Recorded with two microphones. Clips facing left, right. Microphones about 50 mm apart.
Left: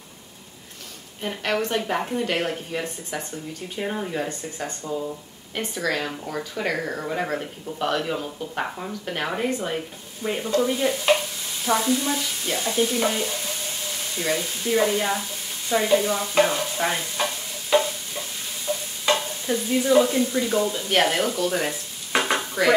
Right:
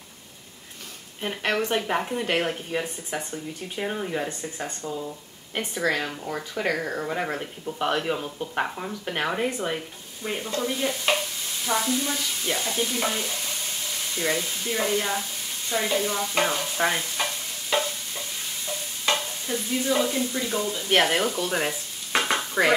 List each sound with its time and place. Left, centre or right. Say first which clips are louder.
1.2 s speech: left 1 dB; centre
3.8 s speech: left 1 dB; centre
4.8 s stir: left 4 dB; centre
5.5 s speech: even; centre
10.2 s stir: left 5 dB; centre
14.1 s speech: left 1 dB; centre
16.7 s speech: even; centre
17.2 s stir: left 2 dB; centre
18.7 s stir: left 4 dB; centre
21.0 s speech: left 1 dB; centre